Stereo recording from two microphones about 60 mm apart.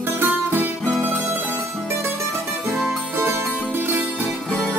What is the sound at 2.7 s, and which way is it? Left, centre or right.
Music, centre.